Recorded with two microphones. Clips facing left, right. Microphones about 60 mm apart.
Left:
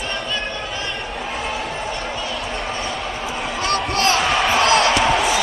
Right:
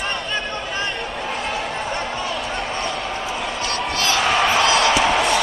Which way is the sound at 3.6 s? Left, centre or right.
Left.